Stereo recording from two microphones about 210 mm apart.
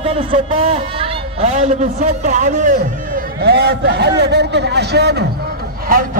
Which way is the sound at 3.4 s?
50° right (ahead or behind).